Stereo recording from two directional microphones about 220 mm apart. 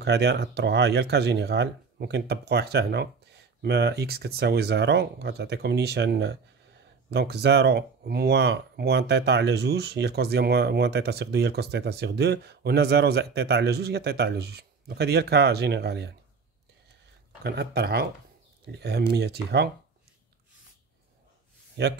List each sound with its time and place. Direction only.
0.0 s speech: 50° right (ahead or behind)
17.4 s speech: 45° right (ahead or behind)
21.8 s speech: 50° right (ahead or behind)